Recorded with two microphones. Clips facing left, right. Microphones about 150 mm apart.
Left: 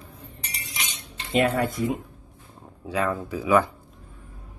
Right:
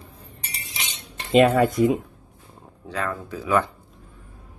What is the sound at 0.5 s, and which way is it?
Cutlery, 25° right (ahead or behind).